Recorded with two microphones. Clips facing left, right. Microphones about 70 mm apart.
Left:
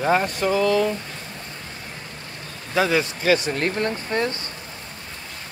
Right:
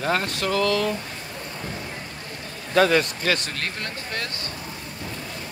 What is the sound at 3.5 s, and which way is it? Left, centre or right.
Speech, left.